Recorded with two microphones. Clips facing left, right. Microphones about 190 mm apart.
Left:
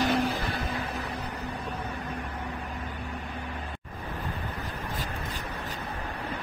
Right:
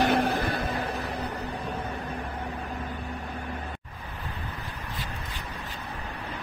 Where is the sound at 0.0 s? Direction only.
60° right (ahead or behind).